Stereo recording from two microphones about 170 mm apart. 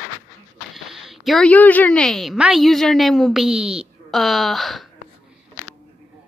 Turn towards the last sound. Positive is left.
turn(degrees=0)  # may be behind; listen again after turning